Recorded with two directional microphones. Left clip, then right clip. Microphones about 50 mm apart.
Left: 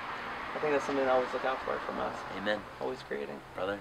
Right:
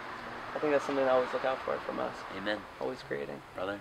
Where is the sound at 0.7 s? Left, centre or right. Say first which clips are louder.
Right 1 dB; centre.